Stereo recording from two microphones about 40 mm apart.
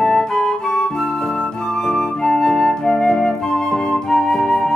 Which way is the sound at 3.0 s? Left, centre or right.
Centre.